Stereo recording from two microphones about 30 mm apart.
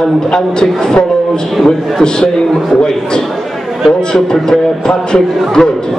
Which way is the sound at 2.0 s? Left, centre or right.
Left.